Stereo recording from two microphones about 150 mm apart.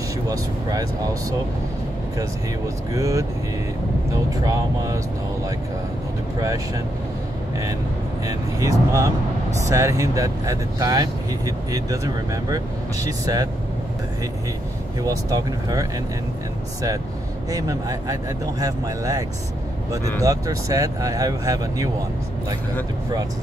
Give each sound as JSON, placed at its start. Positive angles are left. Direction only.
{"t": 0.3, "sound": "speech", "side_deg": -25}
{"t": 2.9, "sound": "speech", "side_deg": -20}
{"t": 8.3, "sound": "speech", "side_deg": -20}
{"t": 15.0, "sound": "speech", "side_deg": -25}
{"t": 17.5, "sound": "speech", "side_deg": -25}